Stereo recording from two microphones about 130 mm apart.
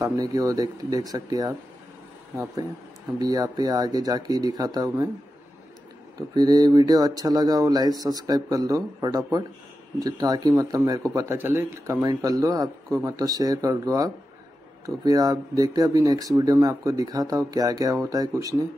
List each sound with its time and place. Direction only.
0.0 s speech: 25° right (ahead or behind)
3.2 s speech: 30° right (ahead or behind)
6.3 s speech: 30° right (ahead or behind)